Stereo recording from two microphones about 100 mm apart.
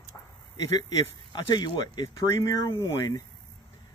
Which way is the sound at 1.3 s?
45° left (ahead or behind).